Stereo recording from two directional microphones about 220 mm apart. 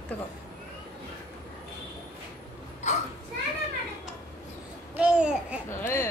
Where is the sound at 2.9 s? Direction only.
30° left (ahead or behind).